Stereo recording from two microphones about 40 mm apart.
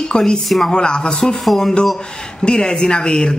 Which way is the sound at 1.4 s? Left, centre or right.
Centre.